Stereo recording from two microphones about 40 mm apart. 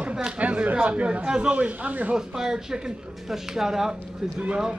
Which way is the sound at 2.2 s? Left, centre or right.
Centre.